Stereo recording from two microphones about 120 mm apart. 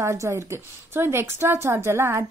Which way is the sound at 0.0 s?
25° right (ahead or behind).